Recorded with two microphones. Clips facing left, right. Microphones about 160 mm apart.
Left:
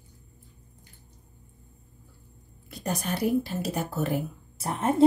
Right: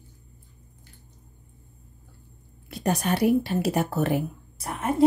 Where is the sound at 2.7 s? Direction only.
70° right (ahead or behind).